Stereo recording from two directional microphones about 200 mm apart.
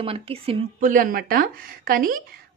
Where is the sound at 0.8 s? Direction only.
45° right (ahead or behind).